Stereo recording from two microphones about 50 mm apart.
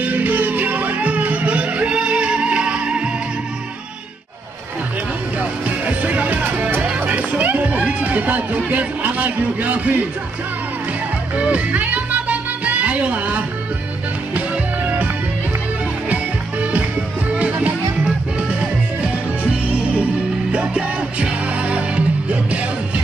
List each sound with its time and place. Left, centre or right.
0.0 s music: right
5.7 s music: right
11.3 s speech: right
11.7 s music: right
17.4 s music: right
20.7 s music: right